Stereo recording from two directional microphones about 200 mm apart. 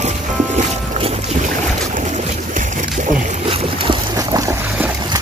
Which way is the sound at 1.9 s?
40° right (ahead or behind).